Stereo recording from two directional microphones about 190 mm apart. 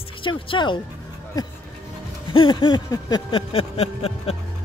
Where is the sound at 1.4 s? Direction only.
20° left (ahead or behind).